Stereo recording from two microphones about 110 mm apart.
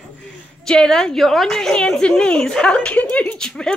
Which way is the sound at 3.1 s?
10° left (ahead or behind).